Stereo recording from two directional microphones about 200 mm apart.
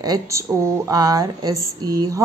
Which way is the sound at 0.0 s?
15° right (ahead or behind).